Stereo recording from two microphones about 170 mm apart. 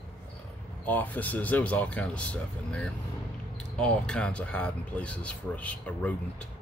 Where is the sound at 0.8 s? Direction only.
10° left (ahead or behind).